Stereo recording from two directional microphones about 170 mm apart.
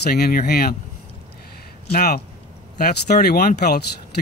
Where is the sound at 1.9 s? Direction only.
60° left (ahead or behind).